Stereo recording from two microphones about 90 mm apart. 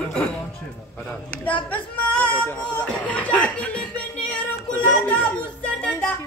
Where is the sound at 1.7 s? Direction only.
15° left (ahead or behind).